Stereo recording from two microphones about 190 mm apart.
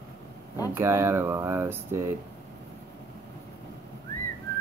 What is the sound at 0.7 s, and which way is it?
Speech, 15° right (ahead or behind).